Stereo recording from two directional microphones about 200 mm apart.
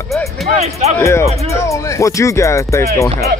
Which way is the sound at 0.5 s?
30° right (ahead or behind).